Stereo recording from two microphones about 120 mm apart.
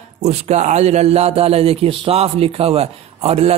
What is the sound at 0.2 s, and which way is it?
A man's voice, 65° right (ahead or behind).